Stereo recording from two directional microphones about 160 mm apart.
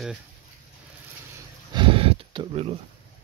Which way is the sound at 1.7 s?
30° right (ahead or behind).